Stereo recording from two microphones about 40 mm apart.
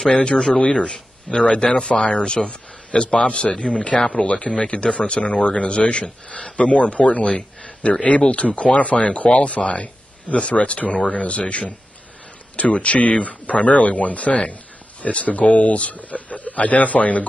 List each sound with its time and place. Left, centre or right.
0.0 s speech: left
7.6 s a sound: left
8.0 s speech: left